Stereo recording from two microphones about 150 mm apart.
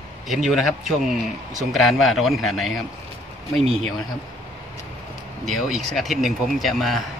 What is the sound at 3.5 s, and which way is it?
Speech, 40° right (ahead or behind).